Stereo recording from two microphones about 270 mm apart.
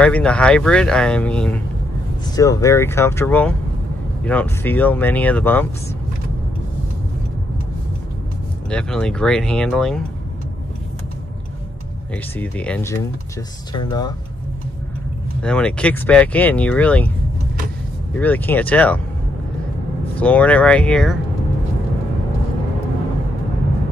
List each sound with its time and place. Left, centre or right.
0.0 s speech: centre
8.6 s speech: centre
12.4 s speech: centre
15.4 s speech: centre
18.1 s speech: centre
20.2 s speech: centre